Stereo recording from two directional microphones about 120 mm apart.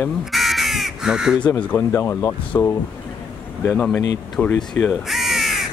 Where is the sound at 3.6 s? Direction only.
10° left (ahead or behind).